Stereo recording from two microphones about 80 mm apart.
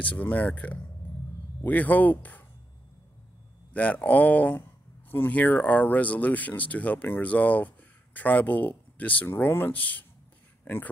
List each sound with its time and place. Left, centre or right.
0.0 s speech: centre
3.7 s speech: centre
10.6 s a sound: left